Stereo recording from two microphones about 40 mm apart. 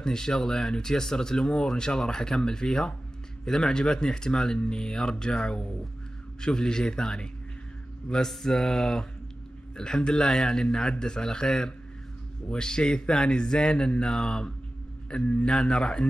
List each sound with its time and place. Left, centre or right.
0.0 s speech: centre
8.3 s speech: centre
15.0 s speech: left